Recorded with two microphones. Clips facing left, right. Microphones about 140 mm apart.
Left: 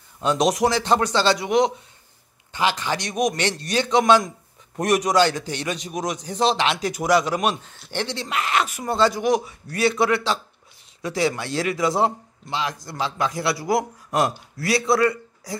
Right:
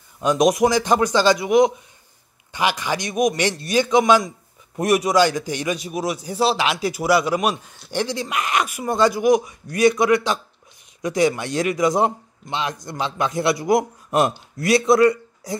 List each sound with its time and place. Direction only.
0.2 s a man's voice: 10° right (ahead or behind)